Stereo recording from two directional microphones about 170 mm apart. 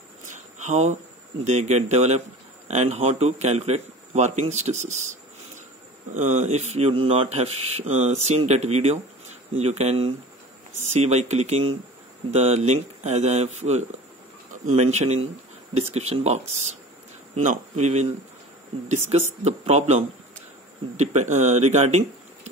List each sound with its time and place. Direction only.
0.6 s speech: 45° right (ahead or behind)
6.1 s speech: 45° right (ahead or behind)
17.4 s speech: 45° right (ahead or behind)
19.4 s speech: 40° right (ahead or behind)